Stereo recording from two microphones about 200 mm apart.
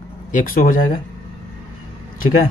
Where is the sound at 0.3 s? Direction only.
40° left (ahead or behind).